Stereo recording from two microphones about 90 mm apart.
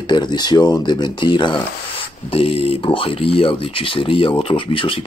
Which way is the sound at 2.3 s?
90° left.